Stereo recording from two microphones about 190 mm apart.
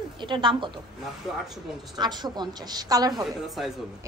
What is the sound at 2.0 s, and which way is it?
A woman's voice, 20° right (ahead or behind).